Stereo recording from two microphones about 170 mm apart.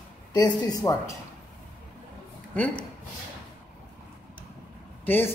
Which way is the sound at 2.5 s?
5° left (ahead or behind).